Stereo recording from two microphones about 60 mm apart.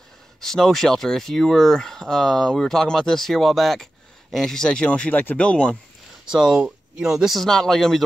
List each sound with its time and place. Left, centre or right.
0.4 s speech: centre
4.6 s speech: centre
6.2 s speech: centre
7.3 s speech: centre